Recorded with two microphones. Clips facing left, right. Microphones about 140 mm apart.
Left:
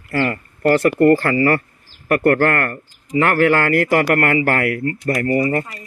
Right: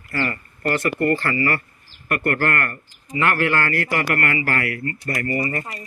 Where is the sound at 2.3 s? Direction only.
70° left (ahead or behind).